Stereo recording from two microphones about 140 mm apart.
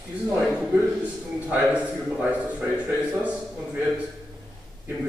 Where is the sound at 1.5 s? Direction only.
10° right (ahead or behind).